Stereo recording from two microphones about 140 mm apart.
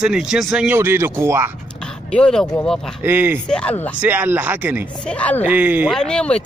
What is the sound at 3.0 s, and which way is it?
Speech, 15° right (ahead or behind).